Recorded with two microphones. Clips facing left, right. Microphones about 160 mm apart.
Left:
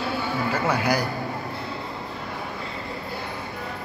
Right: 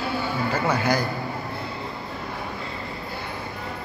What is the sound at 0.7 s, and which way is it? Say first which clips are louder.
Speech: even; 10° left (ahead or behind).